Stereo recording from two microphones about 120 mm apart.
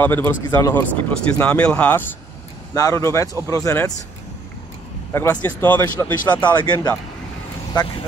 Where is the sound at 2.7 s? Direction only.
25° left (ahead or behind).